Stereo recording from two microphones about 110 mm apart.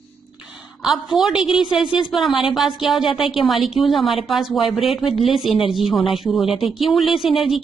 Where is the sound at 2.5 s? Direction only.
Centre (ahead or behind).